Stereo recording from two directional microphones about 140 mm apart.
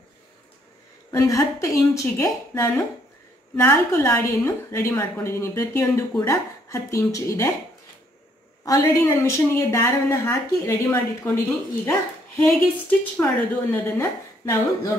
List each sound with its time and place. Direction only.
1.1 s a woman's voice: 25° left (ahead or behind)
8.6 s a woman's voice: 25° left (ahead or behind)
12.4 s a woman's voice: 15° left (ahead or behind)